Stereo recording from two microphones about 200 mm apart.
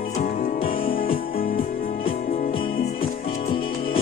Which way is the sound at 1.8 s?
30° left (ahead or behind).